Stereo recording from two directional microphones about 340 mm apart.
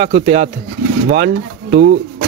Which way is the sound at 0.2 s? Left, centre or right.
Right.